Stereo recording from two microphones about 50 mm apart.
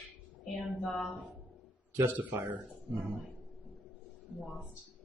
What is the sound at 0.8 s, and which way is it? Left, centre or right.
Speech, centre.